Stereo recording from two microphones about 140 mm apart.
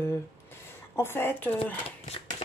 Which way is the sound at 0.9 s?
15° left (ahead or behind).